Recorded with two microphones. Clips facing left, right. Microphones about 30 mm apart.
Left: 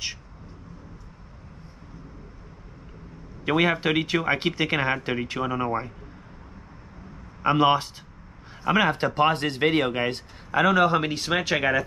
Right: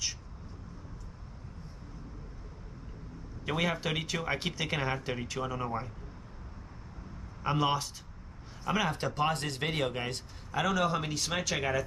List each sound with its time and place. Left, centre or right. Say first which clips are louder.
3.4 s speech: left 9 dB; left
7.4 s speech: left 9 dB; left